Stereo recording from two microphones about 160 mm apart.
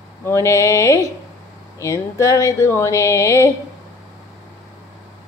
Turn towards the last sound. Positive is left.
turn(degrees=20)  # may be behind; listen again after turning